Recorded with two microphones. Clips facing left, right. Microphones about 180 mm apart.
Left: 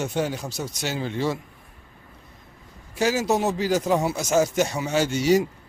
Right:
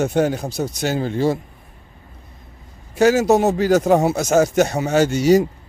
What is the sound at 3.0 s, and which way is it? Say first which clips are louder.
Speech: right 8 dB; 50° right (ahead or behind).